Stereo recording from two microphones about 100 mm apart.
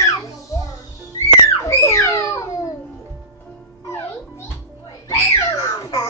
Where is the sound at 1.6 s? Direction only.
30° left (ahead or behind).